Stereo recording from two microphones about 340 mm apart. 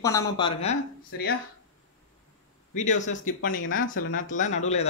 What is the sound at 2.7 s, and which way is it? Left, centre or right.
Speech, left.